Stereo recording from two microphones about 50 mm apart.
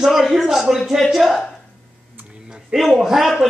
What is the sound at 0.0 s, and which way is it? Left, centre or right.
Speech, centre.